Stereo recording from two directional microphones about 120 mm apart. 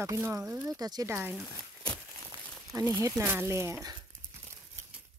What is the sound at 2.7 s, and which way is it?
Speech, 30° right (ahead or behind).